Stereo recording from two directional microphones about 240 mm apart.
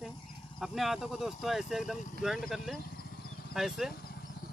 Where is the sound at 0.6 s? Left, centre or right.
Centre.